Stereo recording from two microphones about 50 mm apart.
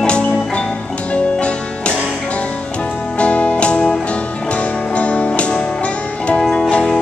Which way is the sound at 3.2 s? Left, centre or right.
Left.